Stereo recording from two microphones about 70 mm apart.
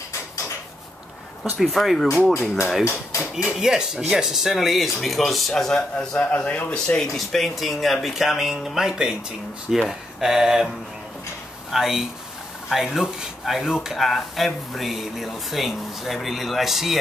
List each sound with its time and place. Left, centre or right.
1.6 s speech: centre
2.8 s speech: left
3.4 s speech: centre
6.1 s speech: left
7.0 s speech: centre
11.7 s speech: centre